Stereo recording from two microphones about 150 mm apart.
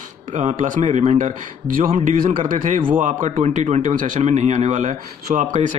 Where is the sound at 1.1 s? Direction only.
70° right (ahead or behind).